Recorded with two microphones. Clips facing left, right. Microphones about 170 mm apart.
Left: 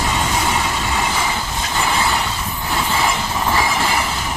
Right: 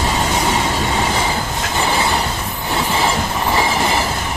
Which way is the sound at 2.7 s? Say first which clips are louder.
Right 2 dB; 20° right (ahead or behind).